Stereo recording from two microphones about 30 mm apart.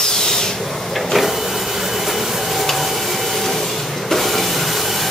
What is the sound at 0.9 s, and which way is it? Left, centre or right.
Printer, centre.